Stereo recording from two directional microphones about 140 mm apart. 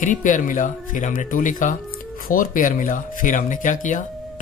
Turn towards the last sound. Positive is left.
turn(degrees=70)  # may be behind; listen again after turning